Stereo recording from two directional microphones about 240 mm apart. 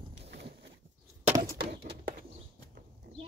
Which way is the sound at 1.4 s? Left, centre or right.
Right.